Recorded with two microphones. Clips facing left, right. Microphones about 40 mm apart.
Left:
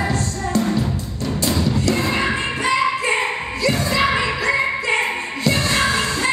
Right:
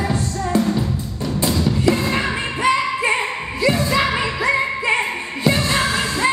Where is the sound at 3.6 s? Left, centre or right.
Centre.